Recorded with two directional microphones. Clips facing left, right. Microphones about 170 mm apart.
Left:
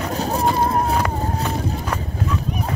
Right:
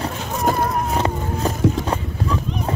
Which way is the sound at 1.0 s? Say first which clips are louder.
Right 1 dB; 35° right (ahead or behind).